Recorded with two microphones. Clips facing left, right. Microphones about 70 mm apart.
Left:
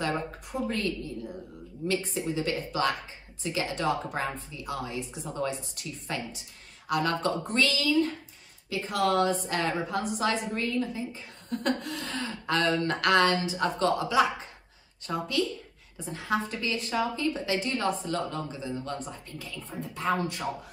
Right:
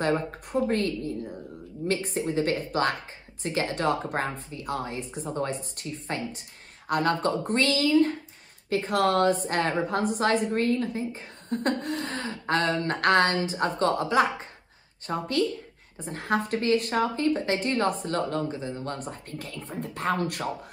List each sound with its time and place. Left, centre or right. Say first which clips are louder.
0.0 s a woman's voice: right 4 dB; right